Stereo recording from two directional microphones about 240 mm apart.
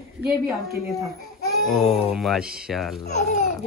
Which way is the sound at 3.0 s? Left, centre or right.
Left.